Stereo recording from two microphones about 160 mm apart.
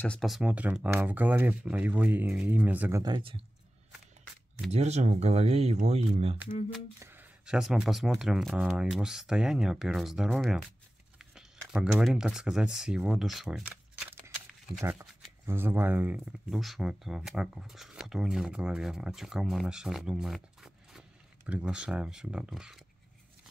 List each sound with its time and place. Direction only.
0.0 s speech: 5° left (ahead or behind)
3.0 s speech: 30° right (ahead or behind)
4.6 s speech: 45° right (ahead or behind)
7.0 s speech: 15° right (ahead or behind)
13.7 s a sound: 10° right (ahead or behind)
14.8 s speech: 15° right (ahead or behind)